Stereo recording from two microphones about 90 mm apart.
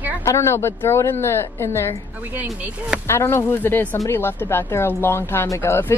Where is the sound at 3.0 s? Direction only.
30° left (ahead or behind).